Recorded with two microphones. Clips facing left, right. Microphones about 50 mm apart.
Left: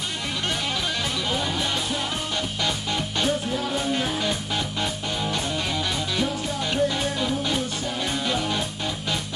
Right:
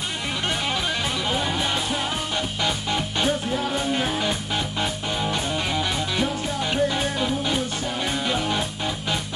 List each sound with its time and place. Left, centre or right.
0.5 s music: right